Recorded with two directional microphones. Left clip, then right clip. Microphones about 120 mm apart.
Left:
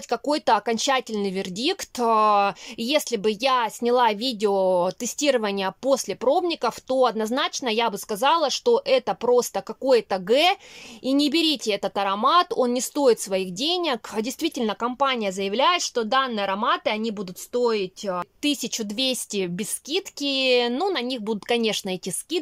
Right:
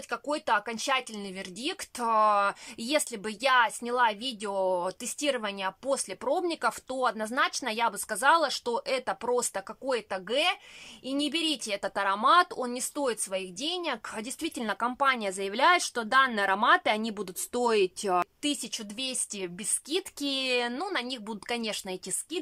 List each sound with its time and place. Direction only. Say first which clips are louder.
0.1 s speech: left 7 dB; 40° left (ahead or behind); by 12.5 s 20° left (ahead or behind)
12.5 s speech: left 10 dB; 35° left (ahead or behind); by 18.3 s 5° right (ahead or behind)
18.4 s speech: left 7 dB; 25° left (ahead or behind)
19.9 s speech: left 6 dB; 15° left (ahead or behind)